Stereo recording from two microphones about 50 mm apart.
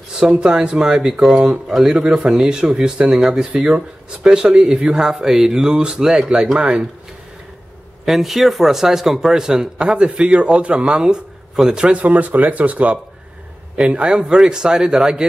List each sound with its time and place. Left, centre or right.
0.2 s a man's voice: centre
8.0 s a man's voice: centre
12.0 s speech: right
13.7 s a man's voice: centre